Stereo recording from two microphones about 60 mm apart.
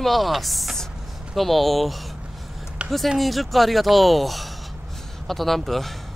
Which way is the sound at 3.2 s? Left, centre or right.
Centre.